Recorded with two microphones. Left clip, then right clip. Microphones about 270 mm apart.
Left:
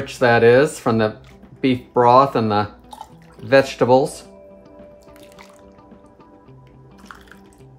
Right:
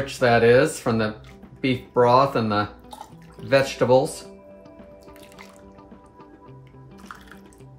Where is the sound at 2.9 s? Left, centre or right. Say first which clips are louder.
Left 3 dB; centre.